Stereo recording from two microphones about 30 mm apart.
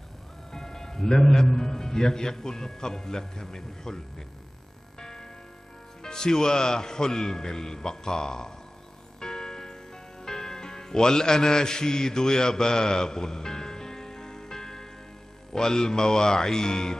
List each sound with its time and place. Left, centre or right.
0.5 s a man's voice: centre
6.0 s a man's voice: left
9.2 s music: left
15.5 s a man's voice: left